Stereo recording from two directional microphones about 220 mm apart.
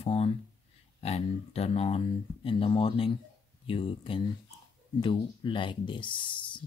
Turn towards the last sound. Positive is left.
turn(degrees=20)  # may be behind; listen again after turning